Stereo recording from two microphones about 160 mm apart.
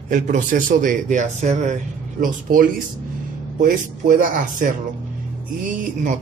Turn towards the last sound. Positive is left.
turn(degrees=-55)  # may be behind; listen again after turning